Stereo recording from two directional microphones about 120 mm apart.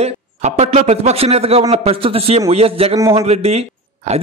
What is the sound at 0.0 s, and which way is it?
A man's voice, 70° right (ahead or behind).